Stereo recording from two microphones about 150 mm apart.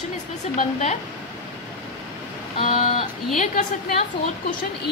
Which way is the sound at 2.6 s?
40° left (ahead or behind).